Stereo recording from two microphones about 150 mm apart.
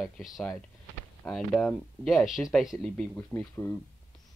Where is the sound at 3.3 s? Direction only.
15° left (ahead or behind).